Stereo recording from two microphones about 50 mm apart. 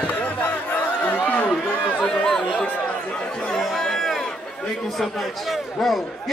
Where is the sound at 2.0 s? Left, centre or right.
Centre.